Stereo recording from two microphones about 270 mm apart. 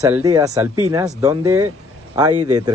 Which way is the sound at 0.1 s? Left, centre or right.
Centre.